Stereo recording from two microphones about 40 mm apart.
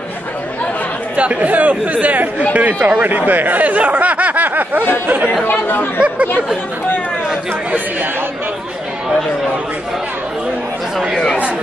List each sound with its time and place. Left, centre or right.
1.1 s speech: right
5.5 s speech: left
5.9 s speech: right